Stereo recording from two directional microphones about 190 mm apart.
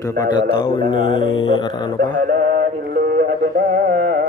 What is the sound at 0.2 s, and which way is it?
Speech, 25° left (ahead or behind).